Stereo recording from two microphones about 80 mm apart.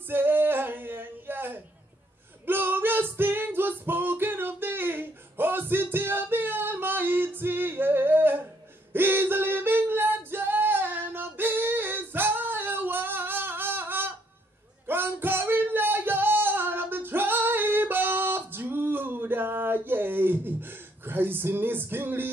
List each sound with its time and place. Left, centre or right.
0.1 s female singing: right
2.4 s music: right
8.9 s female singing: right
14.9 s a sound: right